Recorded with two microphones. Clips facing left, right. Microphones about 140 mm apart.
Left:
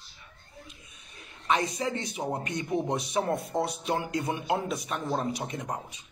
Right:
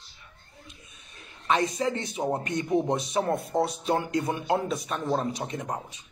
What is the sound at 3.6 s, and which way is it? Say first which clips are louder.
Speech: right 3 dB; 30° right (ahead or behind).